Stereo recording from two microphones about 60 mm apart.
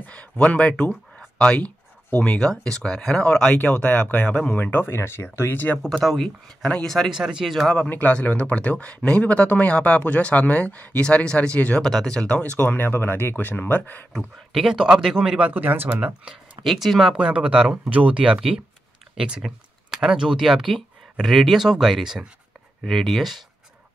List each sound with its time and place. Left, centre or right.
0.0 s speech: left
3.5 s speech: left
4.8 s speech: left
5.8 s speech: centre
7.1 s speech: centre
7.9 s speech: left
11.8 s speech: centre; by 14.0 s left
14.1 s speech: centre
15.5 s speech: right
16.0 s speech: centre
16.6 s speech: centre
17.1 s speech: centre
22.8 s speech: centre